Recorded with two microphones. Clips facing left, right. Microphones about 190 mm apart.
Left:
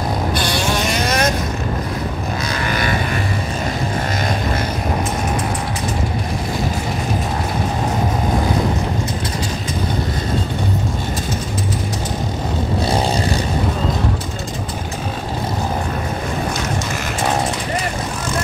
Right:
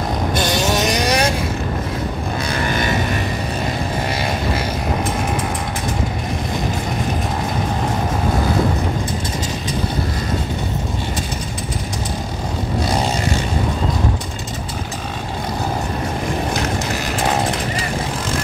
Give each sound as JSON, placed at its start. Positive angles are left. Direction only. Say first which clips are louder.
{"t": 0.3, "sound": "vehicle", "louder": "right 1 dB", "side_deg": -45}
{"t": 0.7, "sound": "vehicle", "louder": "right 1 dB", "side_deg": -15}